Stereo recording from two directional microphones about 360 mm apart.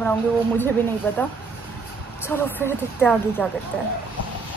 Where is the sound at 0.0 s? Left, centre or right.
Centre.